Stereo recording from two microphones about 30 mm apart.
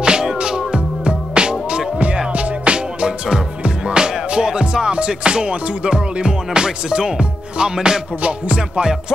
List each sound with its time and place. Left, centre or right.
0.0 s music: right
8.2 s music: right
8.5 s music: right